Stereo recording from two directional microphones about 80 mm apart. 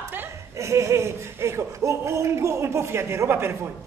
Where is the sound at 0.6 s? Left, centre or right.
Right.